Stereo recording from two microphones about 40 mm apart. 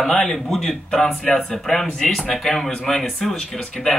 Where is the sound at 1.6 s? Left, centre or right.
Centre.